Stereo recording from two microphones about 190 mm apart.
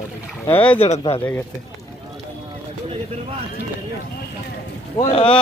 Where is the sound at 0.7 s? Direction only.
35° left (ahead or behind).